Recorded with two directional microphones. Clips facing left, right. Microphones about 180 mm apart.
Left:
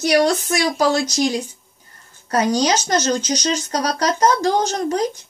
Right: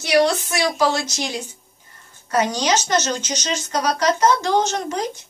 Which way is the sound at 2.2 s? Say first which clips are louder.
Left 2 dB; 35° left (ahead or behind).